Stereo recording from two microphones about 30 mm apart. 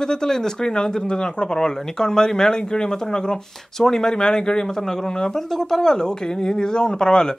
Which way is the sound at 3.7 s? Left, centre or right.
Centre.